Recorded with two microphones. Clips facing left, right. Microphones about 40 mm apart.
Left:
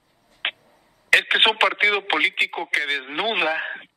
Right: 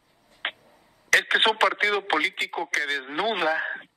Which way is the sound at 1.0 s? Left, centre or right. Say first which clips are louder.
Left 3 dB; left.